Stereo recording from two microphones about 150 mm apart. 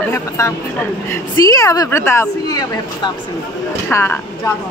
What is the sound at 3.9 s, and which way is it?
Speech, 15° left (ahead or behind).